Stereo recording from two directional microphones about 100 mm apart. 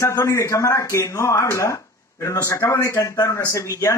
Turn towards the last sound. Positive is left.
turn(degrees=30)  # may be behind; listen again after turning